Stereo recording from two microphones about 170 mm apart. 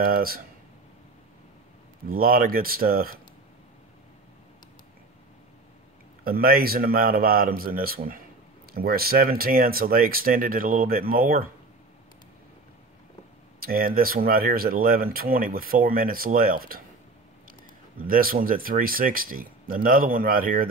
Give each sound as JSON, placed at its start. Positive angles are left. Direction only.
{"t": 0.0, "sound": "speech", "side_deg": -60}
{"t": 2.0, "sound": "speech", "side_deg": -60}
{"t": 6.2, "sound": "speech", "side_deg": -60}
{"t": 13.6, "sound": "speech", "side_deg": -60}
{"t": 17.9, "sound": "speech", "side_deg": -55}